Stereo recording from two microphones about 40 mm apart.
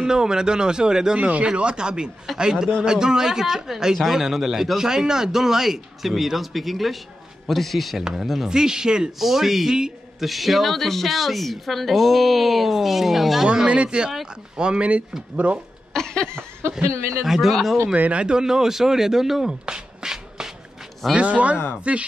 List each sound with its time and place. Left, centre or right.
0.0 s a man's voice: centre
1.2 s speech: right
1.5 s a man's voice: right
2.3 s a man's voice: centre
2.8 s a man's voice: centre
8.5 s a man's voice: centre
9.2 s speech: centre
13.7 s a man's voice: right
15.9 s a sound: centre
16.7 s speech: centre
17.9 s speech: right
18.2 s a man's voice: centre
19.6 s beatboxing: centre
21.2 s speech: right